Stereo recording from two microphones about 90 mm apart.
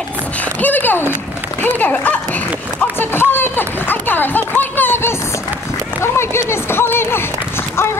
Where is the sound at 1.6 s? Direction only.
20° left (ahead or behind).